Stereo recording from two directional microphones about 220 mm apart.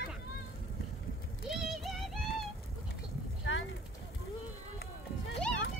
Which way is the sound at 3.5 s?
60° left (ahead or behind).